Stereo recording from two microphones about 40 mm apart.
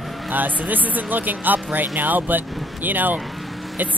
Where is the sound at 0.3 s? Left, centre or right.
Right.